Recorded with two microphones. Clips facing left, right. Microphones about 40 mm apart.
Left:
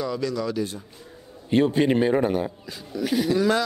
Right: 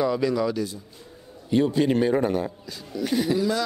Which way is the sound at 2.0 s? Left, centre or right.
Centre.